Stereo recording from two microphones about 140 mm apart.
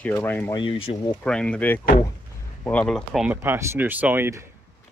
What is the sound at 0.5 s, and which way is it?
Speech, 35° left (ahead or behind).